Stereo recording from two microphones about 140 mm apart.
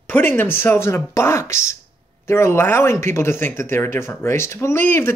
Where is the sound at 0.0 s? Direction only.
10° left (ahead or behind).